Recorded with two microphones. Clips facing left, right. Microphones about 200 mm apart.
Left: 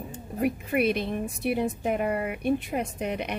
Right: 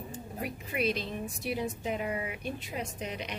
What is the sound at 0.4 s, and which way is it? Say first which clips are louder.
A woman's voice: left 9 dB; 60° left (ahead or behind).